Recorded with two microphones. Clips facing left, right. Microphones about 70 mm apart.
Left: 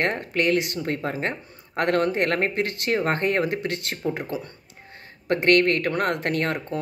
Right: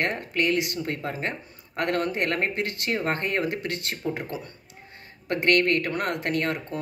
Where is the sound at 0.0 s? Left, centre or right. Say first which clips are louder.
Left 2 dB; left.